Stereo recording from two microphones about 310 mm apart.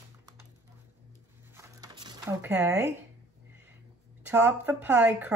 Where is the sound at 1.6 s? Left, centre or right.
Centre.